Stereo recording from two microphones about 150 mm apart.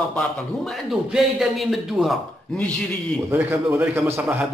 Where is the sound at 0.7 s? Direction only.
Centre (ahead or behind).